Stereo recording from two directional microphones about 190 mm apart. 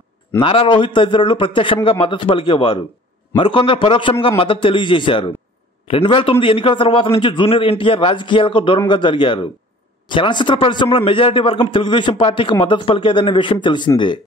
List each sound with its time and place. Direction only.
0.4 s a man's voice: 30° left (ahead or behind)